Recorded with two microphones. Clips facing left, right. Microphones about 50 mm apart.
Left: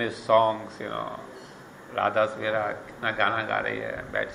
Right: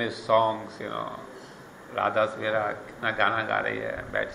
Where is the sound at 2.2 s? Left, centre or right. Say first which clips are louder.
Even; centre.